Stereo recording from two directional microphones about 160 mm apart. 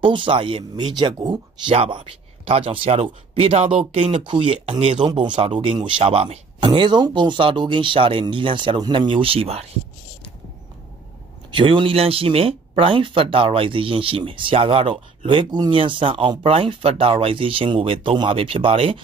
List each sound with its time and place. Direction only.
0.0 s speech: 30° right (ahead or behind)
11.5 s speech: 35° right (ahead or behind)